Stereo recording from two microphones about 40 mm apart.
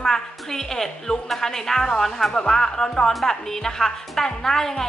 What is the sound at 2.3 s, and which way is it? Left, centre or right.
A woman's voice, centre.